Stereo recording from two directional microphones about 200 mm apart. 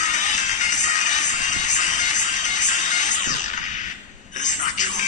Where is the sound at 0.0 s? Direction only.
35° left (ahead or behind).